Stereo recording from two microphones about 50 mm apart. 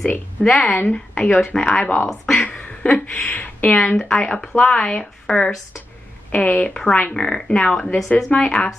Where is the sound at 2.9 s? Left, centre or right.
Left.